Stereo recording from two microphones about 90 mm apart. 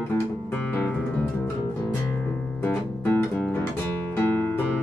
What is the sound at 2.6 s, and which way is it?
Music, 20° left (ahead or behind).